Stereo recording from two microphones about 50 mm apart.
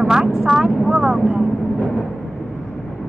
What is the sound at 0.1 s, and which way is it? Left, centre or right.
Speech, centre.